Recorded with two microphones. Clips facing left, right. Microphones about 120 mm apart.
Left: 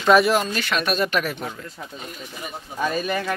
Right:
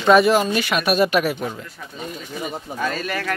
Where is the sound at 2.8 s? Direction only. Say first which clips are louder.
Left 2 dB; 15° left (ahead or behind).